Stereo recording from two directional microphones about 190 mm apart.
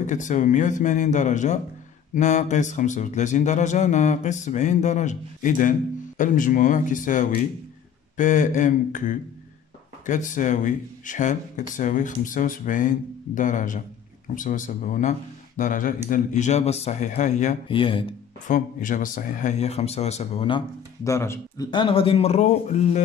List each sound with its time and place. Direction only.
0.0 s speech: 40° left (ahead or behind)
17.6 s speech: 25° left (ahead or behind)
18.5 s speech: 45° left (ahead or behind); by 21.6 s 15° left (ahead or behind)
21.6 s speech: 25° left (ahead or behind)